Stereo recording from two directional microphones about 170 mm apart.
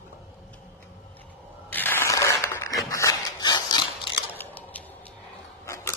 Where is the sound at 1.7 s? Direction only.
10° left (ahead or behind).